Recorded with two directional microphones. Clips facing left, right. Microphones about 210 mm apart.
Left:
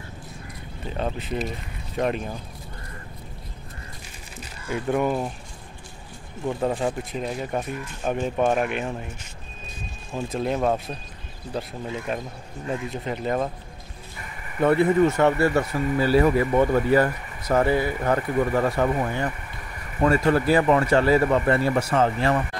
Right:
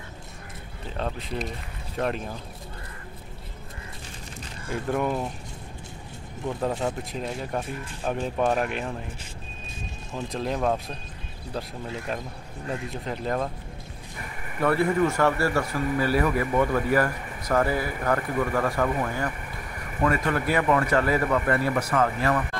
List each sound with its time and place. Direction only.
0.9 s speech: 5° left (ahead or behind)
4.4 s speech: 5° left (ahead or behind)
6.4 s speech: 5° left (ahead or behind)
7.6 s speech: 30° right (ahead or behind)
8.1 s speech: 5° left (ahead or behind)
10.1 s speech: 5° left (ahead or behind)
14.6 s speech: 20° left (ahead or behind)